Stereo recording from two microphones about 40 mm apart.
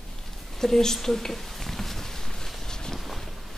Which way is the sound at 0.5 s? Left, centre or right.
Centre.